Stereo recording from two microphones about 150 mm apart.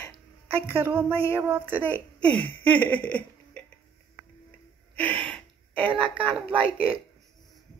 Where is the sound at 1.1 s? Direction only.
35° right (ahead or behind).